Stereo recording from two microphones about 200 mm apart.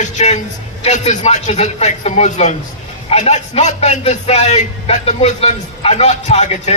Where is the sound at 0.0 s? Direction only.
35° left (ahead or behind).